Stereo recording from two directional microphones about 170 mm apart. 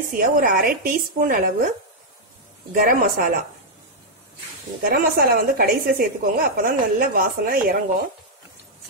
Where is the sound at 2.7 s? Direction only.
55° right (ahead or behind).